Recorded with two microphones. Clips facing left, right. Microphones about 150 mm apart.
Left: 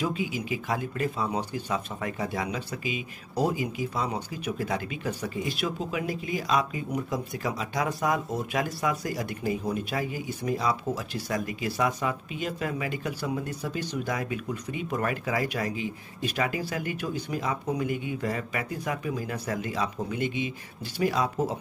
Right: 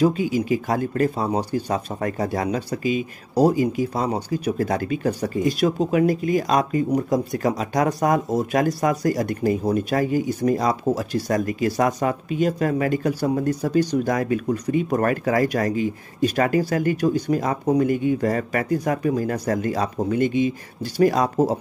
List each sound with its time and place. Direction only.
0.0 s speech: 45° right (ahead or behind)